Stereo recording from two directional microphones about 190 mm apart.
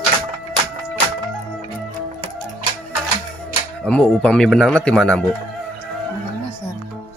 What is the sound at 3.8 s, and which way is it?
Speech, 5° left (ahead or behind).